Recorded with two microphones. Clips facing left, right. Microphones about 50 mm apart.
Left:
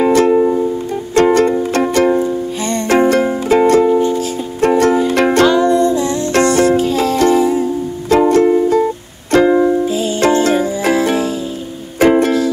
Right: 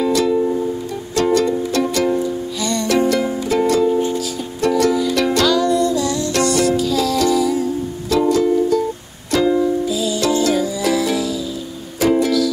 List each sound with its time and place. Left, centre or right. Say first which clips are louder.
0.0 s music: left 6 dB; left